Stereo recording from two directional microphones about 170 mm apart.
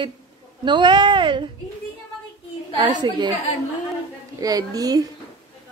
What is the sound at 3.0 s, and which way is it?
Speech, 25° right (ahead or behind).